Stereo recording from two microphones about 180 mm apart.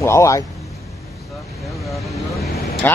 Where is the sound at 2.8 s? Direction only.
10° left (ahead or behind).